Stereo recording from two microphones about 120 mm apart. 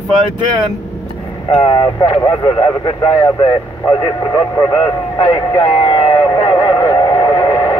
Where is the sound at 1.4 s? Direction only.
40° left (ahead or behind).